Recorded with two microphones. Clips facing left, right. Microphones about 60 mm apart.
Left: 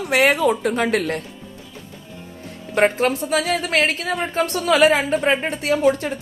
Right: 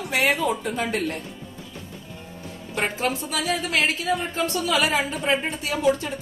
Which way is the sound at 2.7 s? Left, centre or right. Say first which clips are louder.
Left 8 dB; left.